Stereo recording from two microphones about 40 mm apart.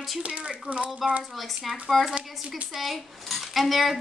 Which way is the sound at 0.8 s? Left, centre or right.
Centre.